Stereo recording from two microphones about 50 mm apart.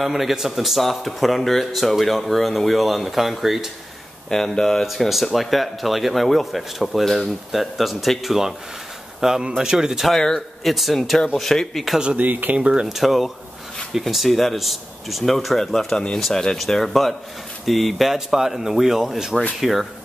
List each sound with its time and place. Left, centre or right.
0.0 s speech: centre
4.3 s speech: centre
4.8 s speech: centre
12.2 s speech: right
12.5 s speech: right
12.8 s speech: centre